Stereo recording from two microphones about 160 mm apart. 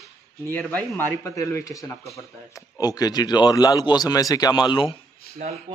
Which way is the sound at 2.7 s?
25° left (ahead or behind).